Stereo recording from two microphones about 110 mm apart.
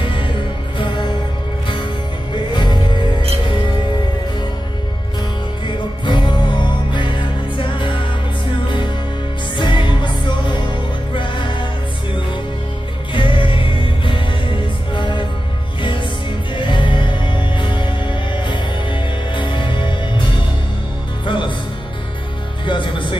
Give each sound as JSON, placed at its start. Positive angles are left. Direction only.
{"t": 0.0, "sound": "music", "side_deg": 50}
{"t": 2.3, "sound": "music", "side_deg": 45}
{"t": 5.7, "sound": "music", "side_deg": 45}
{"t": 13.1, "sound": "music", "side_deg": 50}
{"t": 21.3, "sound": "music", "side_deg": 45}
{"t": 22.7, "sound": "music", "side_deg": 45}